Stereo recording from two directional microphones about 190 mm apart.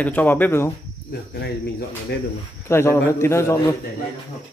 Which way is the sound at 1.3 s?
60° left (ahead or behind).